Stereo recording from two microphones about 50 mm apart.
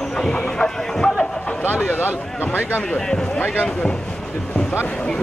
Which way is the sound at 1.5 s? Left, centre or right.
Left.